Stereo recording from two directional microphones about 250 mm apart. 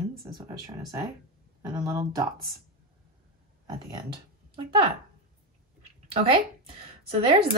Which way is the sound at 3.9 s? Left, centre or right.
Centre.